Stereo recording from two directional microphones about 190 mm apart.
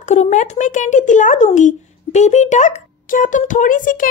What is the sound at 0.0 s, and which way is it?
Speech, 35° left (ahead or behind).